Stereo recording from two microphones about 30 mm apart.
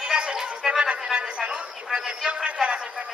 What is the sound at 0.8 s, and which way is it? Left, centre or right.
Speech, right.